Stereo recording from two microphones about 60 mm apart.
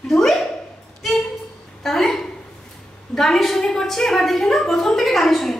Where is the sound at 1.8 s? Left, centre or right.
Centre.